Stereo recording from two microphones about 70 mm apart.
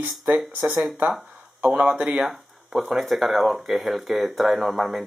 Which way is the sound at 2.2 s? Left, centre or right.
Centre.